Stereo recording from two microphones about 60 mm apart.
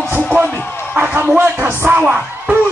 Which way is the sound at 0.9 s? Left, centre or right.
Right.